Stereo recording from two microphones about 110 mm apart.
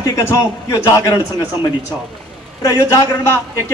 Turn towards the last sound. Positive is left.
turn(degrees=25)  # may be behind; listen again after turning